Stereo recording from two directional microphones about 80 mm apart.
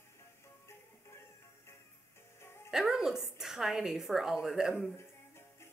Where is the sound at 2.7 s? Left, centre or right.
Centre.